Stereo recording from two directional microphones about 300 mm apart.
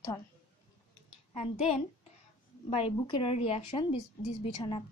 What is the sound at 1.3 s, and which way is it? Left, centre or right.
A woman's voice, left.